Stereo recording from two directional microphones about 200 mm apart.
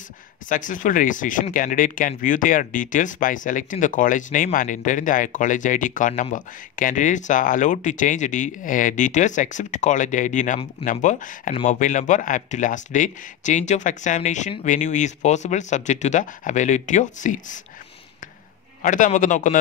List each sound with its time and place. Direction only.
0.5 s speech: 40° left (ahead or behind)
18.8 s speech: 40° left (ahead or behind)